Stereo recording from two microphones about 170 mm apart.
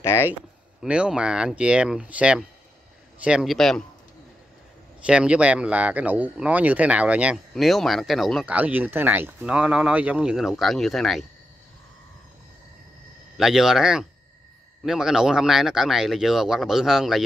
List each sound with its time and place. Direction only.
0.0 s speech: 15° left (ahead or behind)
0.8 s speech: 5° right (ahead or behind)
5.0 s speech: 5° right (ahead or behind)
13.4 s speech: centre (ahead or behind)